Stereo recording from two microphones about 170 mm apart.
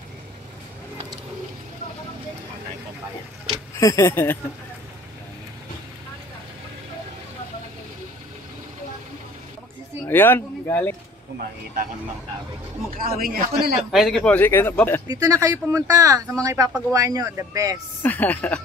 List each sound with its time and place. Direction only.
3.8 s speech: 20° left (ahead or behind)
10.0 s speech: 10° left (ahead or behind)
13.0 s a man's voice: 60° right (ahead or behind)
13.9 s speech: centre (ahead or behind)
15.0 s speech: 20° right (ahead or behind)
18.0 s speech: 10° left (ahead or behind)